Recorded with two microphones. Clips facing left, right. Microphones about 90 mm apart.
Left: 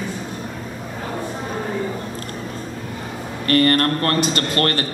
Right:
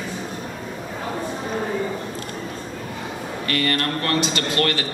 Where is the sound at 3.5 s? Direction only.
45° left (ahead or behind).